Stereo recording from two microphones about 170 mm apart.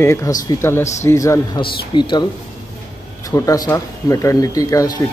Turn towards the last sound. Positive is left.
turn(degrees=20)  # may be behind; listen again after turning